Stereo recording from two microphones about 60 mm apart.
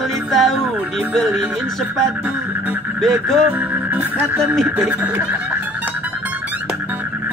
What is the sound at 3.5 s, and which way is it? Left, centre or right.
Music, right.